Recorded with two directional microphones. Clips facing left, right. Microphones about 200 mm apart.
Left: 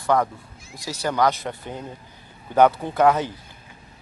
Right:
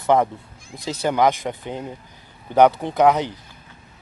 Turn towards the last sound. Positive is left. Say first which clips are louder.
# right 2 dB
turn(degrees=-15)  # may be behind; listen again after turning